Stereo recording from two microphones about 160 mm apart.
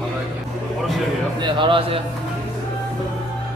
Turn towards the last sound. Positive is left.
turn(degrees=-30)  # may be behind; listen again after turning